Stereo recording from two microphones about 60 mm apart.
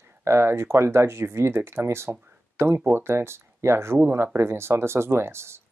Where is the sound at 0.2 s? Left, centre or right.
Right.